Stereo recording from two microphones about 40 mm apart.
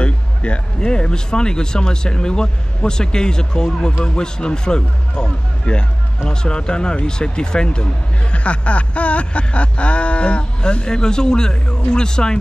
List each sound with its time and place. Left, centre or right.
0.0 s speech: left